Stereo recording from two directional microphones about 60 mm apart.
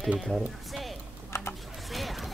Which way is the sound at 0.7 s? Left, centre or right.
Centre.